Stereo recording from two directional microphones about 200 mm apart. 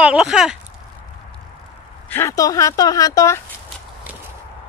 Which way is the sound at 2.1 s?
10° left (ahead or behind).